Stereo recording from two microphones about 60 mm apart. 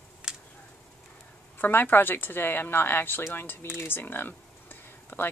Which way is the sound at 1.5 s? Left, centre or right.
Left.